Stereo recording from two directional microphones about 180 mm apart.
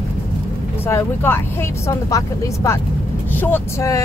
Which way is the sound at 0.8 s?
10° left (ahead or behind).